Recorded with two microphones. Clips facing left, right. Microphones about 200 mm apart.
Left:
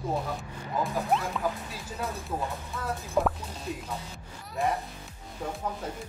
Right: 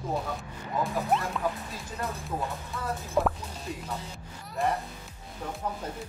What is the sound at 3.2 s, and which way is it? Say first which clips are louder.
Speech: even; centre (ahead or behind).